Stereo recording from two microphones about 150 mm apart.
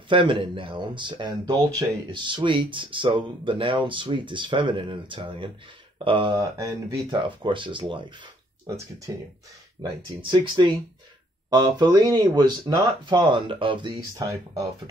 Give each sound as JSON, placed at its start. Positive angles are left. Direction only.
{"t": 0.1, "sound": "speech", "side_deg": -35}
{"t": 8.6, "sound": "speech", "side_deg": -20}
{"t": 10.2, "sound": "speech", "side_deg": -30}
{"t": 14.1, "sound": "speech", "side_deg": -20}